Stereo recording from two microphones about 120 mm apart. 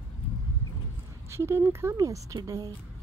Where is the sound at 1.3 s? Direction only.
20° right (ahead or behind).